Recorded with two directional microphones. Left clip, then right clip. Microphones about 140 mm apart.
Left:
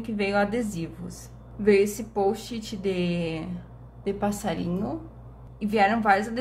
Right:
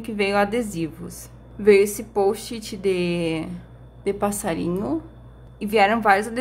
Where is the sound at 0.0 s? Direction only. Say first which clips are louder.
Right 4 dB; 40° right (ahead or behind).